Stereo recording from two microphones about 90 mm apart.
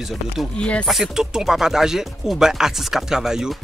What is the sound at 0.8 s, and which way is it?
Speech, centre (ahead or behind).